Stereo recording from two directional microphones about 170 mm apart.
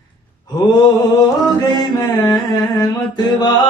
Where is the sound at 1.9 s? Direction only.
20° left (ahead or behind).